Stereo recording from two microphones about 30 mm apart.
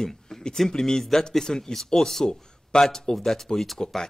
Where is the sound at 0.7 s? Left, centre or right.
Centre.